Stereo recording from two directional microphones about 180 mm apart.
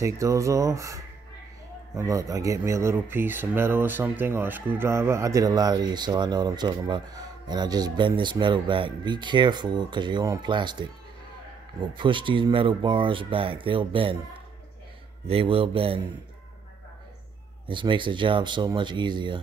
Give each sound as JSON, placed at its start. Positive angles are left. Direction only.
{"t": 0.0, "sound": "speech", "side_deg": -15}
{"t": 15.2, "sound": "speech", "side_deg": -30}
{"t": 17.6, "sound": "speech", "side_deg": -25}